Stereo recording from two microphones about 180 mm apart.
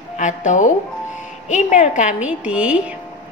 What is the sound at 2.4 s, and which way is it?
Speech, 5° right (ahead or behind).